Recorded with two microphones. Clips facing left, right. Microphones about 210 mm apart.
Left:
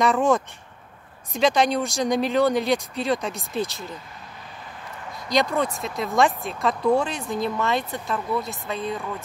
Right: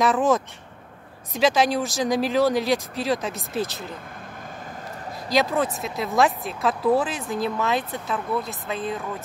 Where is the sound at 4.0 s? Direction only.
50° right (ahead or behind).